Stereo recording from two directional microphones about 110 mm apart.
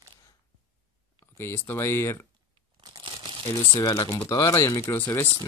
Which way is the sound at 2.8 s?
40° right (ahead or behind).